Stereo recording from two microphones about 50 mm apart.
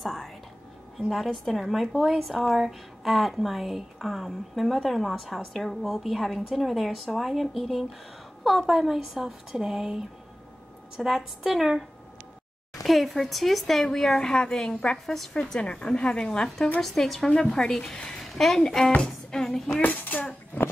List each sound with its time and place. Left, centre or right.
0.0 s whispering: centre
0.9 s a woman's voice: centre
11.0 s a woman's voice: centre
12.8 s a woman's voice: centre
16.8 s a woman's voice: centre
18.2 s a woman's voice: centre
19.0 s music: centre
19.8 s a child's voice: left
20.6 s a sound: left